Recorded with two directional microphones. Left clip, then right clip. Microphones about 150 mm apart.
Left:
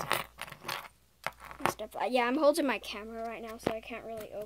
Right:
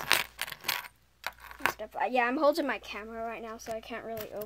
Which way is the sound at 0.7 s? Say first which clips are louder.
Right 4 dB; centre (ahead or behind).